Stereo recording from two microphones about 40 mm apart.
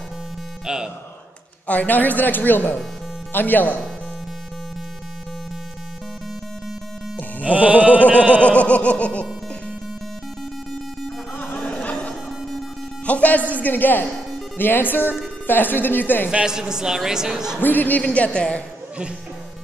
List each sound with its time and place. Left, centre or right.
0.7 s a woman's voice: centre
1.7 s speech: left
7.4 s music: right
8.1 s a sound: right
8.4 s speech: left
11.8 s music: left
13.0 s a woman's voice: left
16.4 s a woman's voice: centre
17.6 s speech: left
18.0 s speech: left